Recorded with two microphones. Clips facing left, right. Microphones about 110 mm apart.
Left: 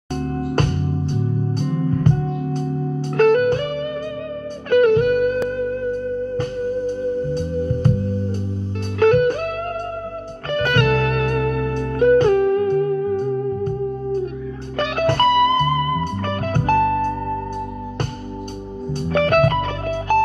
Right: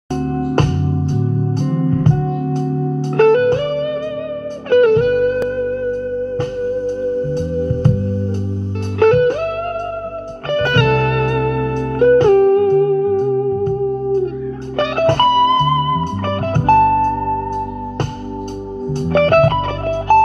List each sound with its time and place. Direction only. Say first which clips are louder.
0.2 s music: right 4 dB; 50° right (ahead or behind)
3.2 s music: right 3 dB; 50° right (ahead or behind)
4.8 s music: right 3 dB; 55° right (ahead or behind)
7.2 s music: right 4 dB; 50° right (ahead or behind)
9.0 s music: right 3 dB; 50° right (ahead or behind)
10.5 s music: right 3 dB; 50° right (ahead or behind)
14.8 s music: right 4 dB; 50° right (ahead or behind)
16.7 s music: right 7 dB; 40° right (ahead or behind)
19.1 s music: right 4 dB; 45° right (ahead or behind)